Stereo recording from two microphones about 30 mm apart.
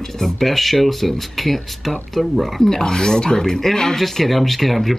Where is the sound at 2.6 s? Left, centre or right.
Centre.